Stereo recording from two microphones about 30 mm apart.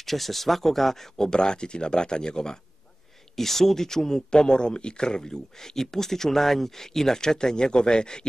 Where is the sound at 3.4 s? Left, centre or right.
Centre.